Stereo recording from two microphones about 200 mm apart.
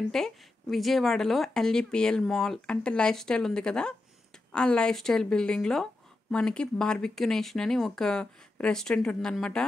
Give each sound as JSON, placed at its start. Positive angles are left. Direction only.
{"t": 0.1, "sound": "speech", "side_deg": 0}